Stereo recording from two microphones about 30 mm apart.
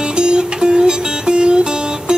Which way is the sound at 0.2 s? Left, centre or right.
Right.